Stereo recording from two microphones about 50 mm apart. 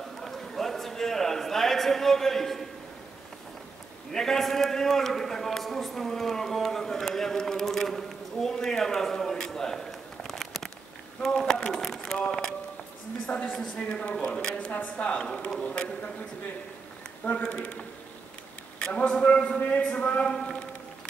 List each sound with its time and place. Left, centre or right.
0.2 s a sound: centre
4.1 s a man's voice: centre
11.2 s a sound: centre
12.3 s speech: centre
13.6 s a man's voice: centre
17.2 s a man's voice: left
18.8 s a man's voice: left
20.3 s speech: centre